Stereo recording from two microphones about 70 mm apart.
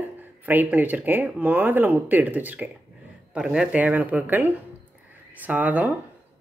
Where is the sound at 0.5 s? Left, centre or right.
Right.